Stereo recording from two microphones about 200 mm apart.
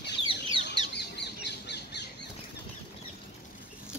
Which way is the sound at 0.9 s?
60° left (ahead or behind).